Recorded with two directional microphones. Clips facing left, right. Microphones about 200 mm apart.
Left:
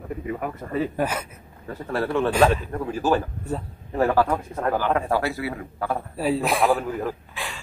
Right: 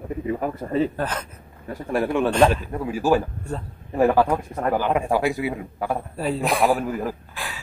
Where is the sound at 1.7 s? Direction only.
15° right (ahead or behind).